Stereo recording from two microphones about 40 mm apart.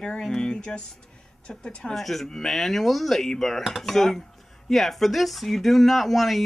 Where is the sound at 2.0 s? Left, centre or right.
Centre.